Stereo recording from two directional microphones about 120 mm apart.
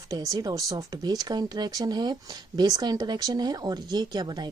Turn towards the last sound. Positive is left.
turn(degrees=-35)  # may be behind; listen again after turning